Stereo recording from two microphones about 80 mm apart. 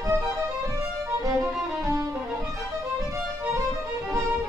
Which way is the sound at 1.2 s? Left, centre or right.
Right.